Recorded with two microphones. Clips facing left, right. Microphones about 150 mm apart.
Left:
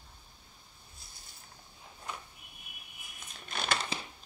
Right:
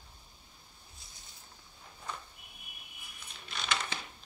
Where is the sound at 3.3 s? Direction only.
45° left (ahead or behind).